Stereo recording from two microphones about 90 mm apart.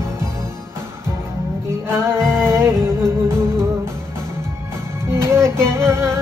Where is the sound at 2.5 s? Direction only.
30° right (ahead or behind).